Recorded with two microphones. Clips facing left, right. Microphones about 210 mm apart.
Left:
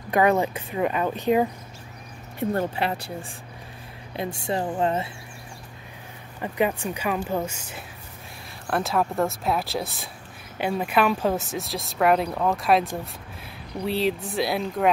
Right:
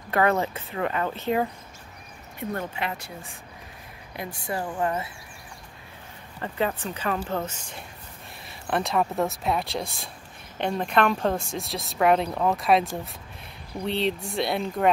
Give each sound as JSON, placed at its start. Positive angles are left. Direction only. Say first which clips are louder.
{"t": 0.1, "sound": "speech", "louder": "left 3 dB", "side_deg": 15}
{"t": 2.5, "sound": "a woman's voice", "louder": "left 4 dB", "side_deg": 35}
{"t": 6.4, "sound": "speech", "louder": "left 3 dB", "side_deg": 15}
{"t": 13.8, "sound": "speech", "louder": "left 2 dB", "side_deg": 5}